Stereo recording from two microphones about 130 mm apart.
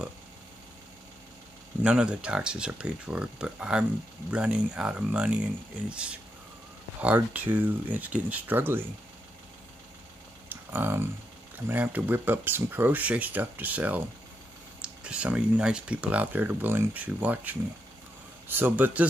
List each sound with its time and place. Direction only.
1.8 s speech: 5° right (ahead or behind)
10.5 s a sound: 15° right (ahead or behind)
11.5 s speech: 15° right (ahead or behind)